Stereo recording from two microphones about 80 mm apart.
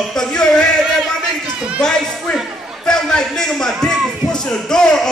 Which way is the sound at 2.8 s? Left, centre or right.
Centre.